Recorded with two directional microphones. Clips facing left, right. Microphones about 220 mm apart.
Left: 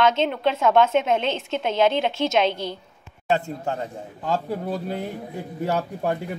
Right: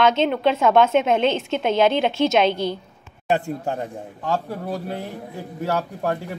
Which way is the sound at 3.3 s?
15° right (ahead or behind).